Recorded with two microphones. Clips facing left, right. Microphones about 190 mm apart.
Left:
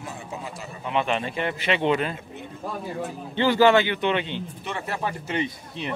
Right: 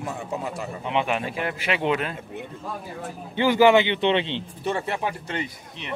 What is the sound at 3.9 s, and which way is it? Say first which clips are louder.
Speech: right 3 dB; 25° right (ahead or behind).